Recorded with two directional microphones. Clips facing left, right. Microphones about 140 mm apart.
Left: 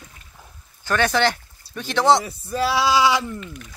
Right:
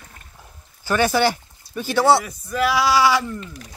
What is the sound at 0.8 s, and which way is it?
Speech, 10° right (ahead or behind).